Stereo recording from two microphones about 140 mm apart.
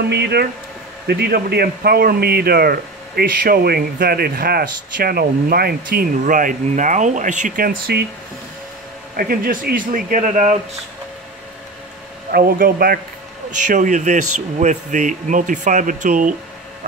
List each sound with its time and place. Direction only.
1.3 s speech: 90° right
9.1 s speech: 90° right; by 10.5 s 65° right (ahead or behind)
12.3 s speech: 90° right
13.7 s speech: 65° right (ahead or behind)